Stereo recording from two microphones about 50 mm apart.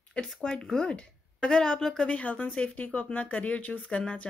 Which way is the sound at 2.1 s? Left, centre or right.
Left.